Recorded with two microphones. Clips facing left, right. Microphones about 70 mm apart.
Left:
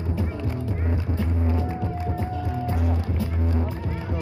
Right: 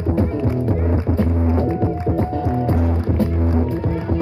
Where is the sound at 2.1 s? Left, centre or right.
Right.